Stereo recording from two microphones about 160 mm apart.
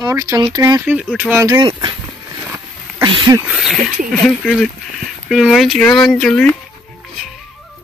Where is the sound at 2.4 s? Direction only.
20° right (ahead or behind).